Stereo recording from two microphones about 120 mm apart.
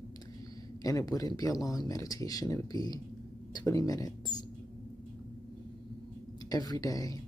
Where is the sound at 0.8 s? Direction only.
30° left (ahead or behind).